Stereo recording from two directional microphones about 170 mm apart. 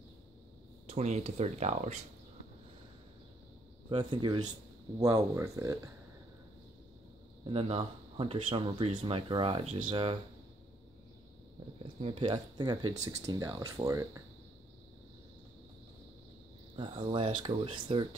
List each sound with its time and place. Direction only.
0.8 s speech: 40° right (ahead or behind)
3.9 s speech: 30° right (ahead or behind)
7.4 s speech: 35° right (ahead or behind)
12.0 s speech: 30° right (ahead or behind)
16.7 s speech: 30° right (ahead or behind)